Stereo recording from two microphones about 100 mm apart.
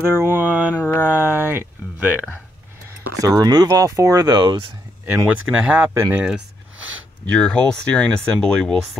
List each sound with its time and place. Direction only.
0.0 s mantra: 25° right (ahead or behind)
0.7 s speech: 15° left (ahead or behind)
1.1 s speech: 20° right (ahead or behind)
3.2 s speech: 40° right (ahead or behind)
5.0 s speech: 15° right (ahead or behind)
7.3 s speech: 5° left (ahead or behind)